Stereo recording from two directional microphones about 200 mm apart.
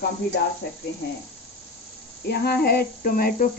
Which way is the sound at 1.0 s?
55° left (ahead or behind).